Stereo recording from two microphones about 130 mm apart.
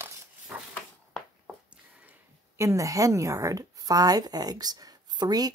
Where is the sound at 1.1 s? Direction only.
5° right (ahead or behind).